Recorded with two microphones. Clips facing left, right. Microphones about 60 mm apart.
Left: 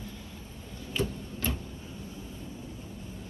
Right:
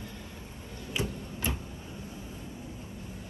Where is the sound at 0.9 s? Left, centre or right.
Centre.